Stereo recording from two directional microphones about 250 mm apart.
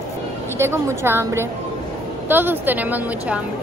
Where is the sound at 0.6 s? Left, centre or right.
Centre.